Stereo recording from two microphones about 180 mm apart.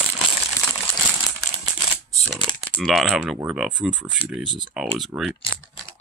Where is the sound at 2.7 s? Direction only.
Centre (ahead or behind).